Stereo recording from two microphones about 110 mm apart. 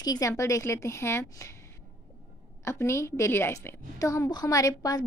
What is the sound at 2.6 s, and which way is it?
A woman's voice, 25° left (ahead or behind).